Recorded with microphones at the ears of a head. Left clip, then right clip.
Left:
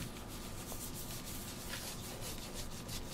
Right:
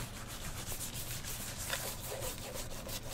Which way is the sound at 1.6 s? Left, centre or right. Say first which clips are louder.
Right 7 dB; right.